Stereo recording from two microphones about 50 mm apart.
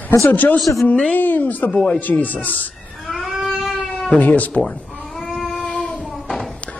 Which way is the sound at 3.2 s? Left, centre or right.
Centre.